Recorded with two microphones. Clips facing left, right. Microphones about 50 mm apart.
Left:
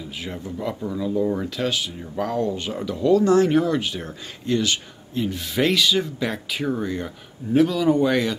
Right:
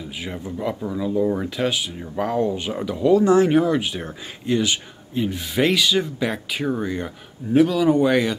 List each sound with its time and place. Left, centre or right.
0.2 s speech: centre